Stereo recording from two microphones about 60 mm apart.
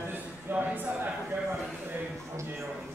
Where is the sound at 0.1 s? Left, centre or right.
Right.